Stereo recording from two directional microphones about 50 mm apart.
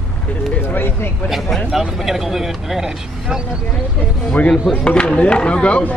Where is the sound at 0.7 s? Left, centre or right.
Left.